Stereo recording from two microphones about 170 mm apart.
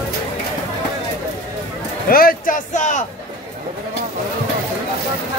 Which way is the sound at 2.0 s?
60° left (ahead or behind).